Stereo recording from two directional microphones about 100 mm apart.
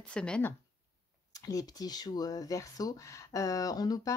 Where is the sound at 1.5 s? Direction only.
35° left (ahead or behind).